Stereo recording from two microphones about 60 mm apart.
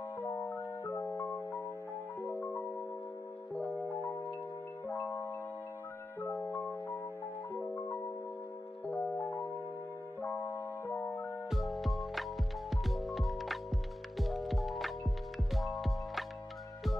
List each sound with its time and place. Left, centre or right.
0.2 s music: left
3.7 s music: left
6.5 s music: left
11.5 s music: centre